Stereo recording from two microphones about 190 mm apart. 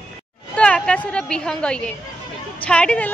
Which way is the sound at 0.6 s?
5° left (ahead or behind).